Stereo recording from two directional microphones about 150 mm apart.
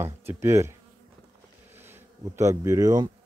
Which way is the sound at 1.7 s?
15° right (ahead or behind).